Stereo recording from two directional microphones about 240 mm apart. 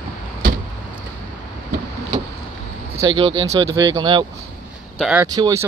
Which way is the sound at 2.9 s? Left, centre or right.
Right.